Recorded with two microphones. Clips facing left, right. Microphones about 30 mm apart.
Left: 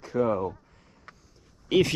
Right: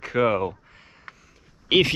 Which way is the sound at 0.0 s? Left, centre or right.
Right.